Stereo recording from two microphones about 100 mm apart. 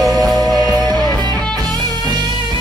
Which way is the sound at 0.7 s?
30° left (ahead or behind).